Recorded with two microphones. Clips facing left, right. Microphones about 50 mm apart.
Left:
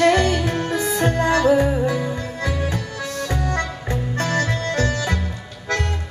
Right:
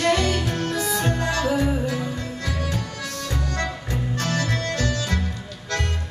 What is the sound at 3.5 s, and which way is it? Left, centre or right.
Accordion, left.